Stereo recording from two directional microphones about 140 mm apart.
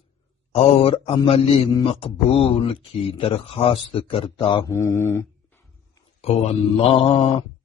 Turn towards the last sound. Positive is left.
turn(degrees=40)  # may be behind; listen again after turning